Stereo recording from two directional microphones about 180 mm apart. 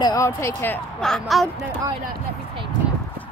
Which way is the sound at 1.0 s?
Centre (ahead or behind).